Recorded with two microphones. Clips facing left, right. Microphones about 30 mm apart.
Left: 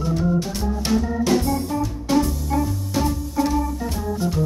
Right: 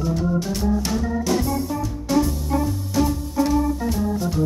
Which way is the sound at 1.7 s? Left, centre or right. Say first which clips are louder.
Left 2 dB; left.